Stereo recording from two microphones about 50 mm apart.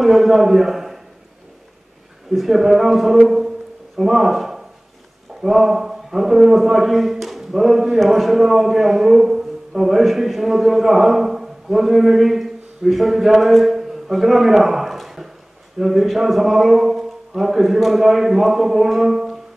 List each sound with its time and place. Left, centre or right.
0.0 s a man's voice: centre
2.3 s a man's voice: centre
3.3 s a sound: centre
4.0 s a man's voice: centre